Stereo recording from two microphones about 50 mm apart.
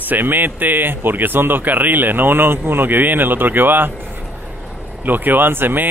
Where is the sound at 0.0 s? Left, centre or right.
Right.